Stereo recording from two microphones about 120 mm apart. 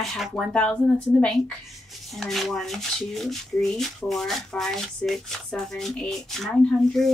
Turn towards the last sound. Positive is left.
turn(degrees=5)  # may be behind; listen again after turning